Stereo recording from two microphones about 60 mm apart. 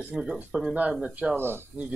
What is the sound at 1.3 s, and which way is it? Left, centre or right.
Speech, right.